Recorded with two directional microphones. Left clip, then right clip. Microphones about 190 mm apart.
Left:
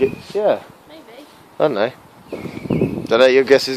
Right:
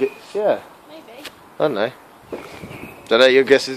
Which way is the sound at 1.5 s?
25° left (ahead or behind).